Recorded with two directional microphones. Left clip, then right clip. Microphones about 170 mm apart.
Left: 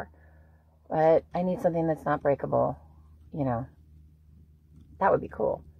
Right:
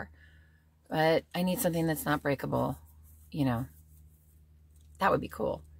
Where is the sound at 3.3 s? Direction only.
10° right (ahead or behind).